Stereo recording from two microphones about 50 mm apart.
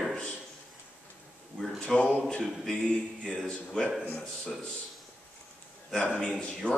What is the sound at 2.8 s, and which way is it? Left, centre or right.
Speech, centre.